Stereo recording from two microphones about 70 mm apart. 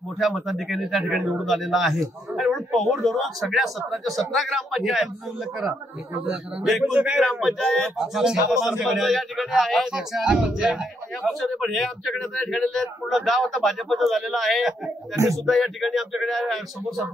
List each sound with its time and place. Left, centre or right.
0.2 s speech: centre
6.8 s speech: centre
7.2 s speech: centre